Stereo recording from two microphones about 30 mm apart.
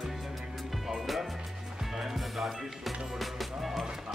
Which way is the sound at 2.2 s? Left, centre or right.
Centre.